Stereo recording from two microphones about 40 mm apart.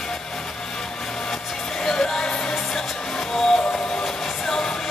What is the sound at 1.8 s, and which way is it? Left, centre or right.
Music, centre.